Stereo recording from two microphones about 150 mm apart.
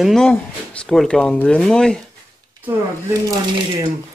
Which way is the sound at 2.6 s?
15° right (ahead or behind).